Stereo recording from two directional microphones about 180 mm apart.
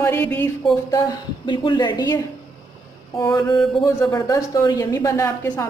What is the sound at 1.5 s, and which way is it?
A woman's voice, 25° left (ahead or behind).